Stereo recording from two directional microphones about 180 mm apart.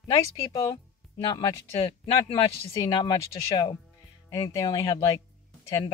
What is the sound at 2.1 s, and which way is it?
A woman's voice, 30° left (ahead or behind).